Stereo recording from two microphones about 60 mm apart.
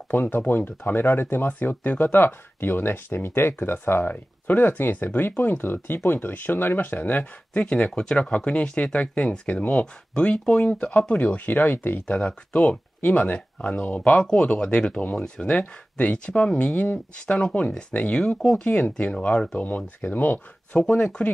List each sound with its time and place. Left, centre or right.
0.1 s speech: left
12.1 s speech: centre
20.7 s speech: centre